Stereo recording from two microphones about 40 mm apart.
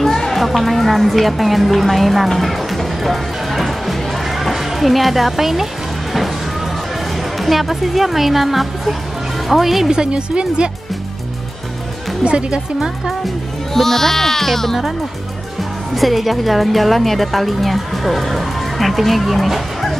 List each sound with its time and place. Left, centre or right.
0.0 s music: centre
7.3 s speech: centre
9.8 s speech: right
12.3 s speech: right
13.7 s speech: centre
15.9 s speech: centre